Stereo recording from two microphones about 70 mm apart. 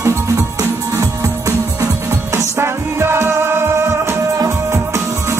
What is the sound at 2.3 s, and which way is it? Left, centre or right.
Music, right.